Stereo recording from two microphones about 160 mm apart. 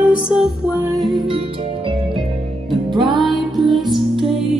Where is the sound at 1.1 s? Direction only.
30° right (ahead or behind).